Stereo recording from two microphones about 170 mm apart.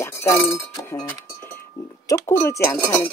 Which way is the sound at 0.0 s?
15° left (ahead or behind).